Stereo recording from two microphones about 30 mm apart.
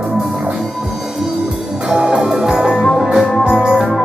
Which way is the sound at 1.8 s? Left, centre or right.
Right.